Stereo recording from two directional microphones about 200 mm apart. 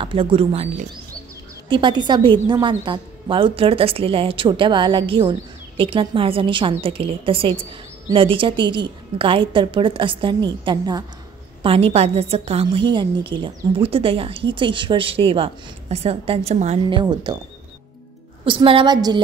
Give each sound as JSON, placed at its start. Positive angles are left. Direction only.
{"t": 0.0, "sound": "a woman's voice", "side_deg": -25}
{"t": 1.7, "sound": "a woman's voice", "side_deg": -25}
{"t": 17.0, "sound": "a woman's voice", "side_deg": -20}
{"t": 18.4, "sound": "a woman's voice", "side_deg": -25}